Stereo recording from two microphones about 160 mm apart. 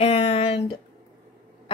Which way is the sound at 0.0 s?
40° left (ahead or behind).